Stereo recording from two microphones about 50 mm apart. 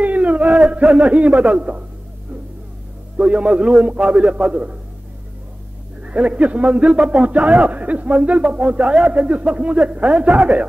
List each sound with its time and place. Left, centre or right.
0.0 s a sound: right
3.2 s a man's voice: right
6.0 s a man's voice: right